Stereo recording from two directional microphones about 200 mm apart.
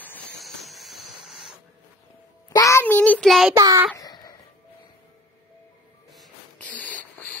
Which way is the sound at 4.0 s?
20° left (ahead or behind).